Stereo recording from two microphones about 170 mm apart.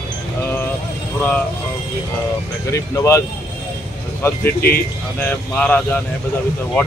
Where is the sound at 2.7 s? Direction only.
20° left (ahead or behind).